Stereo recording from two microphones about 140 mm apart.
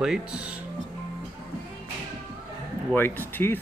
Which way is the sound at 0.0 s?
5° right (ahead or behind).